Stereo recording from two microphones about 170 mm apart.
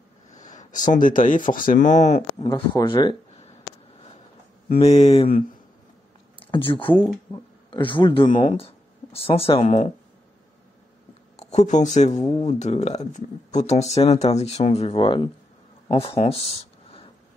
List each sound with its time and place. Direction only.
0.8 s speech: 50° left (ahead or behind)
2.3 s speech: 30° left (ahead or behind)
4.7 s speech: 40° left (ahead or behind)
6.5 s speech: 30° left (ahead or behind)
11.3 s speech: 40° left (ahead or behind)
15.9 s a sound: 35° left (ahead or behind)